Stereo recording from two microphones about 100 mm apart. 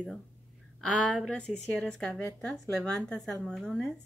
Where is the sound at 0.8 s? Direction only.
10° left (ahead or behind).